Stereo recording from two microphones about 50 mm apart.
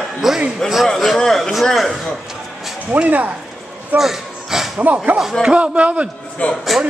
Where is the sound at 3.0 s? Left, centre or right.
Right.